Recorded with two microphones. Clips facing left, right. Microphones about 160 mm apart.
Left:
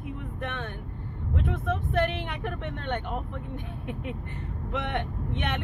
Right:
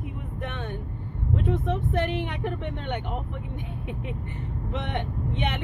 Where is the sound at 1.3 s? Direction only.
20° right (ahead or behind).